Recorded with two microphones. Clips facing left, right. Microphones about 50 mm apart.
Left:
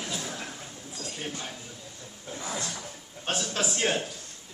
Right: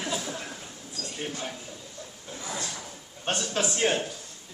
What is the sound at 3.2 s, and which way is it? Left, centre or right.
Speech, centre.